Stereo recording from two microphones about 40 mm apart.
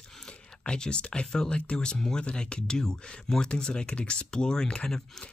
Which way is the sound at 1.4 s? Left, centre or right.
Left.